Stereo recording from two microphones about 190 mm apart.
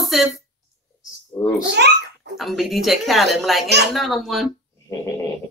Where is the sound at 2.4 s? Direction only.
Centre (ahead or behind).